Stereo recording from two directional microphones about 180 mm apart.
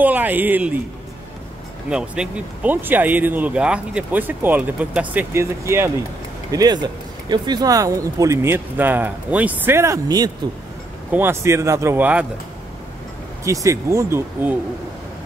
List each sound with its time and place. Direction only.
0.0 s speech: 10° right (ahead or behind)
1.9 s speech: 5° right (ahead or behind)
13.4 s speech: 15° right (ahead or behind)